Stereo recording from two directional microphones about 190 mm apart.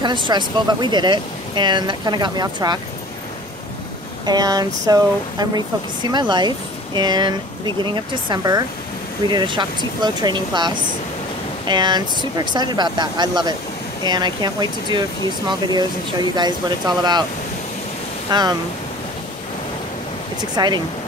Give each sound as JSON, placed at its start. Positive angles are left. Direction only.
{"t": 0.0, "sound": "speech", "side_deg": -25}
{"t": 4.3, "sound": "speech", "side_deg": -20}
{"t": 18.3, "sound": "speech", "side_deg": -20}
{"t": 20.5, "sound": "speech", "side_deg": -20}